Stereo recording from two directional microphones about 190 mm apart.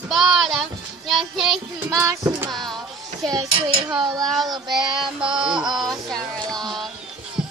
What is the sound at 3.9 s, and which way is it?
Child singing, 20° right (ahead or behind).